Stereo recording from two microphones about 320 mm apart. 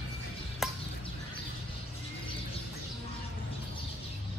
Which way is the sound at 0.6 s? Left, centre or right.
Centre.